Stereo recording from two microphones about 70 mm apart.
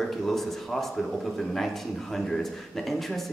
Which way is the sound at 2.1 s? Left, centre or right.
Centre.